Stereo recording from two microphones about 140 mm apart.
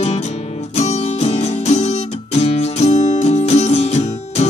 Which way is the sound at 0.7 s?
50° left (ahead or behind).